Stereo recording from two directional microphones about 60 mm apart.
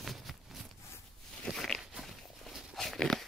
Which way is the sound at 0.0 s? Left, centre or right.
Centre.